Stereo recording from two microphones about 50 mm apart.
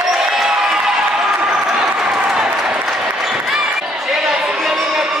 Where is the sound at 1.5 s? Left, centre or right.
Centre.